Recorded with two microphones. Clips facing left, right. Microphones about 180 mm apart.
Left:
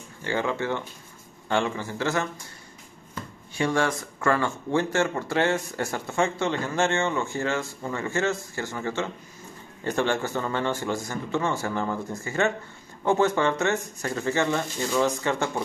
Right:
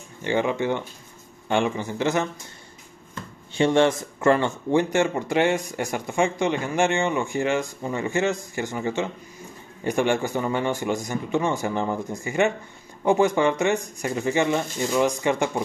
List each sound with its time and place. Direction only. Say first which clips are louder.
0.2 s a man's voice: right 4 dB; 20° right (ahead or behind)
3.5 s speech: right 6 dB; 25° right (ahead or behind)